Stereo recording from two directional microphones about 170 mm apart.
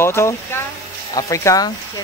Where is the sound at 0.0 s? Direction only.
15° left (ahead or behind).